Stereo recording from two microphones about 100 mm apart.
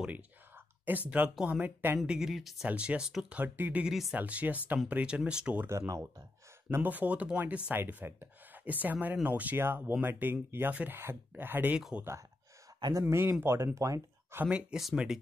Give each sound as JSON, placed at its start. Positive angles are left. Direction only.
{"t": 0.9, "sound": "speech", "side_deg": -20}
{"t": 2.0, "sound": "speech", "side_deg": -5}
{"t": 3.3, "sound": "speech", "side_deg": -20}
{"t": 3.8, "sound": "speech", "side_deg": -5}
{"t": 4.1, "sound": "speech", "side_deg": -15}
{"t": 5.7, "sound": "speech", "side_deg": -30}
{"t": 6.7, "sound": "speech", "side_deg": -20}
{"t": 13.0, "sound": "speech", "side_deg": -25}
{"t": 14.4, "sound": "speech", "side_deg": -10}